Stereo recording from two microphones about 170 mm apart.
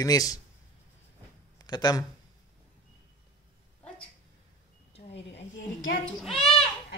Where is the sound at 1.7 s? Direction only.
25° left (ahead or behind).